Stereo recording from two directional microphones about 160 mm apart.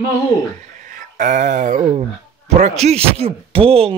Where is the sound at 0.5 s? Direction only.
50° right (ahead or behind).